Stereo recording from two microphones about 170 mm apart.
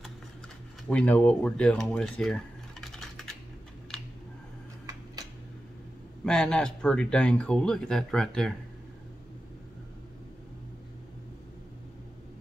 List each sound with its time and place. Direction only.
0.8 s speech: 5° left (ahead or behind)
4.8 s tick-tock: 20° right (ahead or behind)
6.2 s speech: 5° left (ahead or behind)